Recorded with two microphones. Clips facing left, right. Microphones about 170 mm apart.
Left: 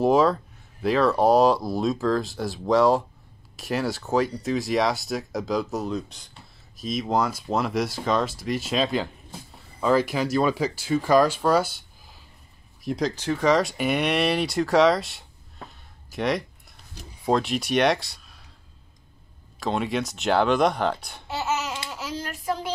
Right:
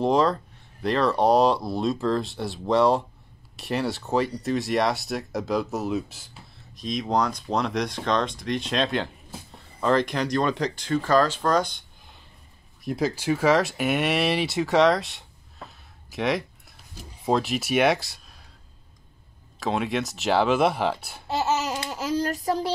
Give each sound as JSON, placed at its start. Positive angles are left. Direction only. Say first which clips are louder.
{"t": 0.0, "sound": "speech", "louder": "left 2 dB", "side_deg": 5}
{"t": 19.6, "sound": "speech", "louder": "even", "side_deg": 0}
{"t": 21.3, "sound": "babbling", "louder": "right 3 dB", "side_deg": -35}